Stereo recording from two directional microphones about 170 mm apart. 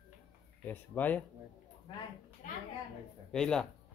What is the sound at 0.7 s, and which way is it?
Speech, 10° left (ahead or behind).